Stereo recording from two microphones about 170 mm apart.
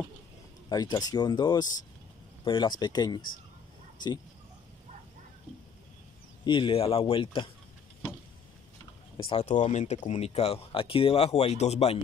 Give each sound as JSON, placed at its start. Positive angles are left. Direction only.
{"t": 0.7, "sound": "speech", "side_deg": 25}
{"t": 6.4, "sound": "speech", "side_deg": 30}
{"t": 9.1, "sound": "speech", "side_deg": 30}